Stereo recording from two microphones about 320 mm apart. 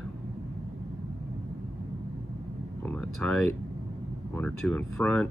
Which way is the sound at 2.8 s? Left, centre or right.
Centre.